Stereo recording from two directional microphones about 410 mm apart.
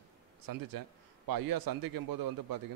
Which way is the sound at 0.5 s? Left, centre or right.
Right.